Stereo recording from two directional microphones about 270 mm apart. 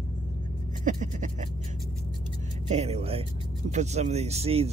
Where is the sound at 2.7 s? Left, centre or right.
Right.